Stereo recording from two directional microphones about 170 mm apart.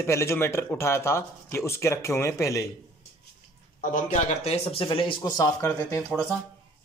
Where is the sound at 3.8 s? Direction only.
50° left (ahead or behind); by 5.2 s 30° left (ahead or behind).